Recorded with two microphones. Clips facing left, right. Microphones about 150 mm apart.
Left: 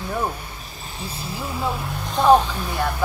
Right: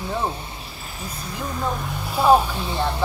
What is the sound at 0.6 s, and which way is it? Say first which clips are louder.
Cricket: left 1 dB; 40° left (ahead or behind).